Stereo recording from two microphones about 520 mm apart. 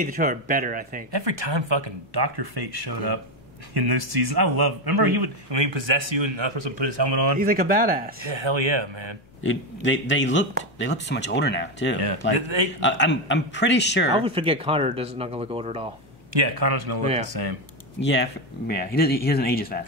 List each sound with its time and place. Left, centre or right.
0.0 s speech: centre
1.1 s speech: right
7.3 s speech: centre
8.3 s speech: right
9.4 s speech: left
12.4 s speech: right
12.8 s speech: left
14.1 s speech: centre
16.3 s speech: right
18.0 s speech: centre